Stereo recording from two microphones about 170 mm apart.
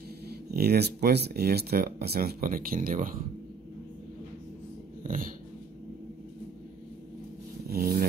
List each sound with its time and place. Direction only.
0.3 s speech: 70° right (ahead or behind)
5.0 s dog: 55° right (ahead or behind)
7.6 s a sound: 60° right (ahead or behind)